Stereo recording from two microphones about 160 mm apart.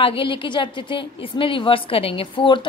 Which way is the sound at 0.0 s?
35° left (ahead or behind).